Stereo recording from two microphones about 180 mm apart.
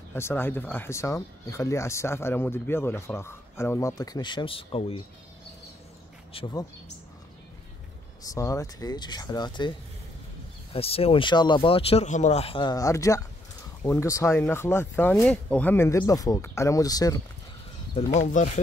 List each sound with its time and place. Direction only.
0.1 s speech: 10° left (ahead or behind); by 4.9 s 30° left (ahead or behind)
6.3 s speech: 25° left (ahead or behind)
8.2 s speech: 20° left (ahead or behind)
17.9 s speech: 45° left (ahead or behind)